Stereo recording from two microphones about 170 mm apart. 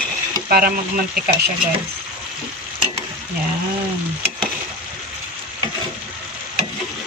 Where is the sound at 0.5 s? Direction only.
60° right (ahead or behind).